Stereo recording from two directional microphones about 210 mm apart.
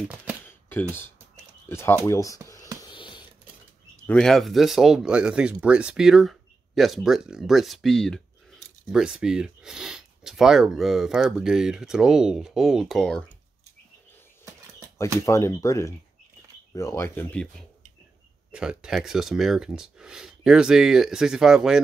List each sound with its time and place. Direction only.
0.1 s speech: 5° right (ahead or behind)
0.7 s speech: 10° left (ahead or behind)
2.8 s a sound: 20° left (ahead or behind)
4.0 s speech: 5° left (ahead or behind)
15.2 s speech: 15° left (ahead or behind); by 21.7 s 5° right (ahead or behind)